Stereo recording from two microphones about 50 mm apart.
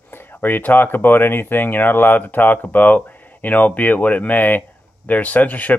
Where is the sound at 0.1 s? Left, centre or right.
Left.